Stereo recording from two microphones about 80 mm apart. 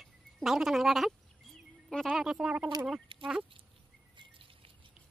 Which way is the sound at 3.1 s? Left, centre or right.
Right.